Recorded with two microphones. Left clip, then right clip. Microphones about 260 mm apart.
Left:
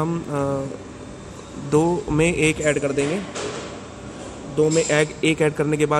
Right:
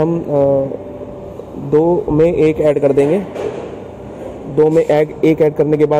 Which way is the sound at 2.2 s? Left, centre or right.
Left.